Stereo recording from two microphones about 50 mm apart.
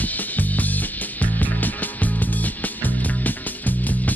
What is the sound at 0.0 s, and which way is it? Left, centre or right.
Music, left.